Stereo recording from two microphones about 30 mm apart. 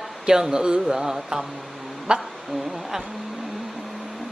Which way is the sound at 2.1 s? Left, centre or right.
Right.